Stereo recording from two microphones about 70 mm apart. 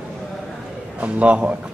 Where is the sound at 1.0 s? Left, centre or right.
Right.